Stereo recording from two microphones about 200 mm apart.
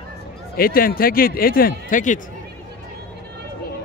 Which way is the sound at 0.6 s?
45° left (ahead or behind).